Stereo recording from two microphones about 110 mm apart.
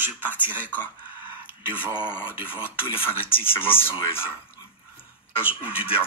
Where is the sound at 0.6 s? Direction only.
15° left (ahead or behind).